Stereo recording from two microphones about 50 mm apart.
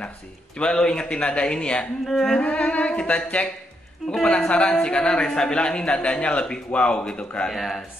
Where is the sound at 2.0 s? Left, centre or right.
Centre.